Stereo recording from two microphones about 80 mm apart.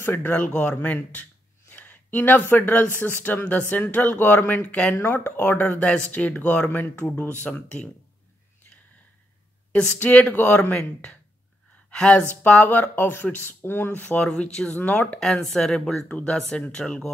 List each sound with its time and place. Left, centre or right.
0.0 s speech: left
4.9 s speech: left
9.9 s speech: centre
10.8 s speech: centre
15.1 s speech: centre